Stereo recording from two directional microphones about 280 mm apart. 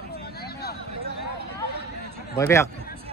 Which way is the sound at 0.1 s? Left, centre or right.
Left.